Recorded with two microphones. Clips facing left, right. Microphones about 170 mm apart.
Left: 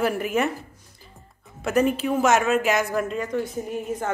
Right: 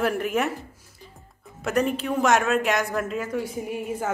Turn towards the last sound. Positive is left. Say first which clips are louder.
# left 1 dB
turn(degrees=-10)  # may be behind; listen again after turning